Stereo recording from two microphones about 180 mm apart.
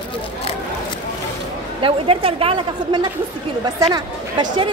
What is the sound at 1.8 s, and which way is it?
A woman's voice, 30° right (ahead or behind).